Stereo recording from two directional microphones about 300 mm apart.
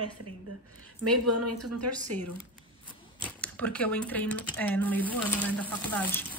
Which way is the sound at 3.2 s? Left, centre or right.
Centre.